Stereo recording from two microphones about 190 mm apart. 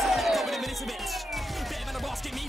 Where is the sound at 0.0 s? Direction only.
Centre (ahead or behind).